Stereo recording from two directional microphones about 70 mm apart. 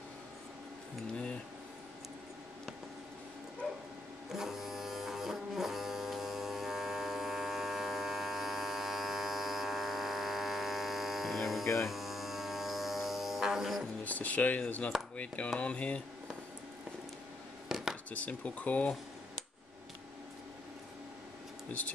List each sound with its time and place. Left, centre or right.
1.1 s a sound: centre
4.3 s electric shaver: centre
11.6 s electric shaver: left
11.9 s music: centre
14.0 s speech: left
17.6 s a sound: centre
18.1 s speech: left